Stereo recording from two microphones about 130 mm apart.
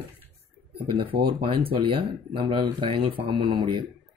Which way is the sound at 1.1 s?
40° right (ahead or behind).